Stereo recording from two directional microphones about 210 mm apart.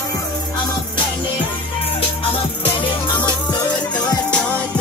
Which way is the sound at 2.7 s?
25° left (ahead or behind).